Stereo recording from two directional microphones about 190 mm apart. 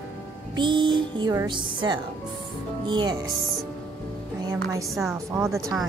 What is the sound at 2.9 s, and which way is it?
Speech, 25° right (ahead or behind).